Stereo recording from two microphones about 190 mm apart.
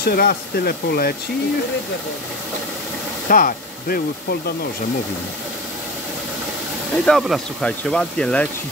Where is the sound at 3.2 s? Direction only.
45° left (ahead or behind).